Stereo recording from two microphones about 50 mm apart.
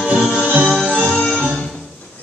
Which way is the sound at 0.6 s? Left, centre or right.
Centre.